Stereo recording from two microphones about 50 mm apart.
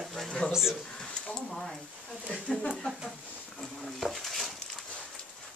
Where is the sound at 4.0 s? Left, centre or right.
Centre.